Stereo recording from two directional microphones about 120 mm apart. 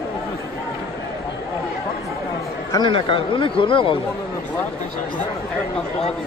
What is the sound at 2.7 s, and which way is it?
Speech, 40° left (ahead or behind).